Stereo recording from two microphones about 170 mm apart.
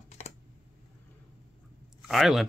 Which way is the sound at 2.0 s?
Centre (ahead or behind).